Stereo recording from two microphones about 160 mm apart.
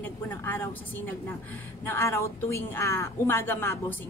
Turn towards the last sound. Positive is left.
turn(degrees=15)  # may be behind; listen again after turning